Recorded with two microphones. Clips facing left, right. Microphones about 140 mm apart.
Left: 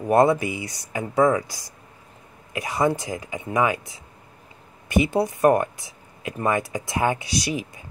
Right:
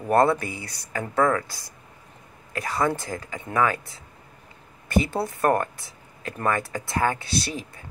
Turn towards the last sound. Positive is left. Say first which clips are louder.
# left 3 dB
turn(degrees=15)  # may be behind; listen again after turning